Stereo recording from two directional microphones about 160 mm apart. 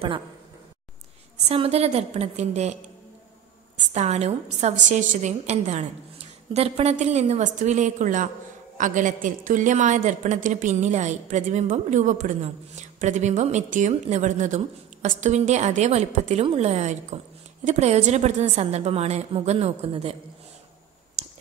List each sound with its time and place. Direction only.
1.5 s a woman's voice: 40° right (ahead or behind)
3.7 s a woman's voice: 45° right (ahead or behind)